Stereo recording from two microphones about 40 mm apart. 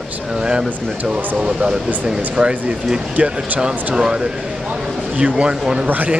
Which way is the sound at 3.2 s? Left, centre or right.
Right.